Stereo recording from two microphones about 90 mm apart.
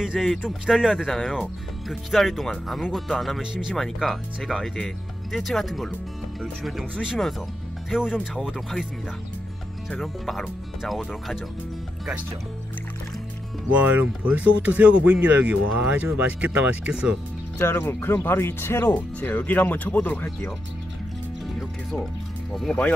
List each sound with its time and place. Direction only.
0.4 s speech: 5° right (ahead or behind)
9.8 s speech: 5° left (ahead or behind)
13.7 s speech: 15° right (ahead or behind)
17.6 s speech: 30° left (ahead or behind)
22.7 s speech: 15° left (ahead or behind)